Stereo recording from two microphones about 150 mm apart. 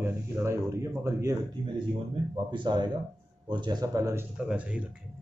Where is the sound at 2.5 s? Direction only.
30° right (ahead or behind).